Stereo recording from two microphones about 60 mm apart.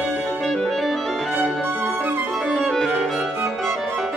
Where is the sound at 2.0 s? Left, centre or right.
Right.